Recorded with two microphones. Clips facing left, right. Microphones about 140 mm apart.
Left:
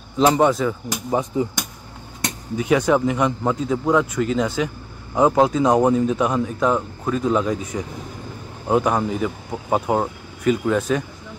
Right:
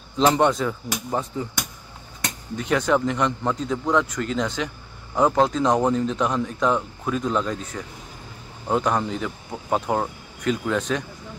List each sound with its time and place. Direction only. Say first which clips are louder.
0.2 s speech: left 3 dB; 5° left (ahead or behind)
1.1 s a man's voice: left 6 dB; 15° left (ahead or behind)
2.5 s a man's voice: left 4 dB; 5° left (ahead or behind)